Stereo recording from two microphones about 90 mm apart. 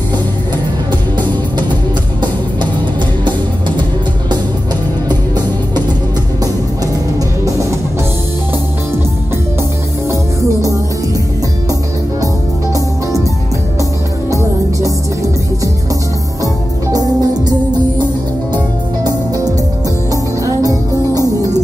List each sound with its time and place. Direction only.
3.3 s music: 60° right (ahead or behind)
16.9 s music: 45° right (ahead or behind)
19.0 s music: 45° right (ahead or behind)